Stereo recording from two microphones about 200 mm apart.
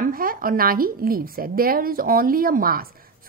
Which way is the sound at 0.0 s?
45° right (ahead or behind).